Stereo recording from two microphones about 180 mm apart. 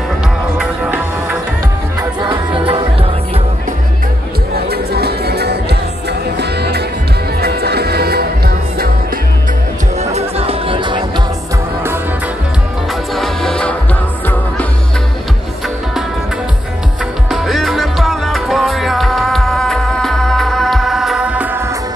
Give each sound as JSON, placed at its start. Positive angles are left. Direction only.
{"t": 0.6, "sound": "music", "side_deg": -5}
{"t": 2.0, "sound": "music", "side_deg": -25}
{"t": 4.6, "sound": "music", "side_deg": -65}
{"t": 9.9, "sound": "music", "side_deg": -35}
{"t": 13.1, "sound": "music", "side_deg": 0}
{"t": 17.3, "sound": "music", "side_deg": 0}